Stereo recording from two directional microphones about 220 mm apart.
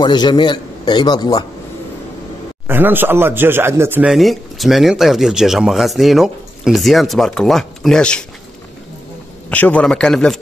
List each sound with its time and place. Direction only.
0.0 s a man's voice: 20° left (ahead or behind)
2.7 s a man's voice: 10° right (ahead or behind)
9.5 s a man's voice: 5° left (ahead or behind)